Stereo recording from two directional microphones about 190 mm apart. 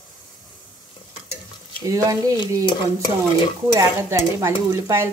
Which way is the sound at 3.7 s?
15° right (ahead or behind).